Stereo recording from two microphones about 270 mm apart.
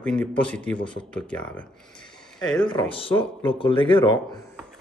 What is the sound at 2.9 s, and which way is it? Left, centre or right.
Speech, centre.